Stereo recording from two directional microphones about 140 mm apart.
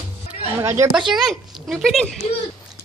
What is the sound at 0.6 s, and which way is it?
Speech, 20° right (ahead or behind).